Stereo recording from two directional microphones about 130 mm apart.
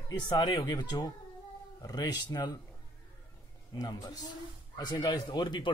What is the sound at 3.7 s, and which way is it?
Speech, 30° left (ahead or behind).